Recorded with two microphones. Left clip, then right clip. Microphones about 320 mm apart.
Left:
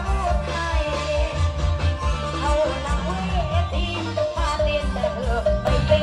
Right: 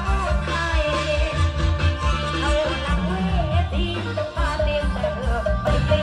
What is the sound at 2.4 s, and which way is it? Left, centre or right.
Music, left.